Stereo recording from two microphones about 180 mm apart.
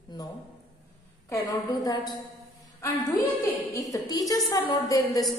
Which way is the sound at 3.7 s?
20° left (ahead or behind).